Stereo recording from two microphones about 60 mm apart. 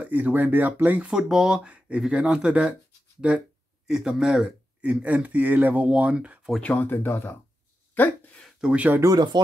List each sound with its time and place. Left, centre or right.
0.0 s speech: right
1.1 s speech: centre
3.2 s a sound: centre
3.9 s speech: centre; by 5.9 s right
5.9 s speech: centre
6.6 s speech: left
7.9 s a sound: left
8.7 s speech: right